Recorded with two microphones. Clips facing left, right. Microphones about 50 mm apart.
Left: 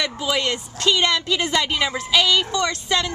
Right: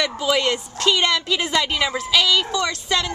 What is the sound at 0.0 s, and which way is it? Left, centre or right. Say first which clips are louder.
A woman's voice: right 3 dB; centre.